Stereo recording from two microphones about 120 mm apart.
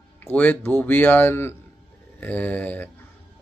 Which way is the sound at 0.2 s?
15° left (ahead or behind).